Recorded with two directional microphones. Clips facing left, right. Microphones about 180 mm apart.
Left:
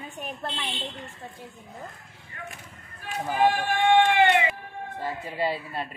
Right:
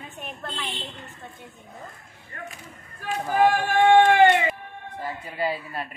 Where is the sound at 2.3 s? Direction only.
50° right (ahead or behind).